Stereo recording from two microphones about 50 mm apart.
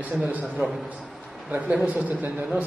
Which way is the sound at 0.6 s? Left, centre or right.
Right.